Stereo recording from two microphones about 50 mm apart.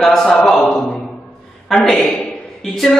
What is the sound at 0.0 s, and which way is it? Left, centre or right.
Speech, centre.